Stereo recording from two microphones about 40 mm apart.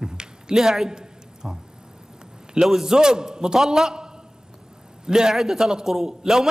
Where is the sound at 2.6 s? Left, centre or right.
Centre.